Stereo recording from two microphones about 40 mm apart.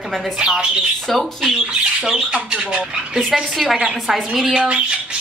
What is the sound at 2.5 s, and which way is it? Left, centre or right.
Speech, right.